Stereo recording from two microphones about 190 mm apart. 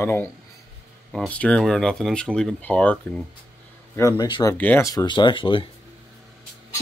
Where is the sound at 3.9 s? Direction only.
20° left (ahead or behind).